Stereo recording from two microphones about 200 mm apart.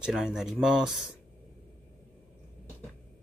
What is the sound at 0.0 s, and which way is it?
Speech, 5° right (ahead or behind).